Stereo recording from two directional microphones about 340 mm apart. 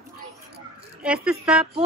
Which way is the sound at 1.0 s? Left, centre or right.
Centre.